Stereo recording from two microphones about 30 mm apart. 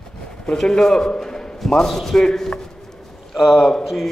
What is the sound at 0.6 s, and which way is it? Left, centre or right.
Speech, centre.